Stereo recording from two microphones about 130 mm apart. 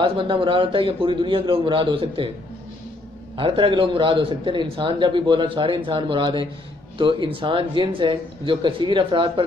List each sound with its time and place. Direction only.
0.0 s a man's voice: 40° right (ahead or behind)
3.3 s a man's voice: 40° right (ahead or behind)